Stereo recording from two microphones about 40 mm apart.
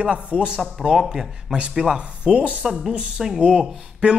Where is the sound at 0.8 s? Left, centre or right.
Centre.